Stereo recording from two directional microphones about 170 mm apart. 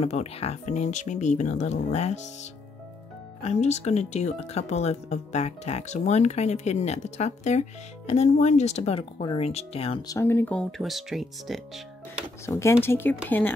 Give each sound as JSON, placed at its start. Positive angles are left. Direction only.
{"t": 0.0, "sound": "speech", "side_deg": 40}
{"t": 3.4, "sound": "speech", "side_deg": 40}
{"t": 10.0, "sound": "speech", "side_deg": 15}
{"t": 12.4, "sound": "speech", "side_deg": 15}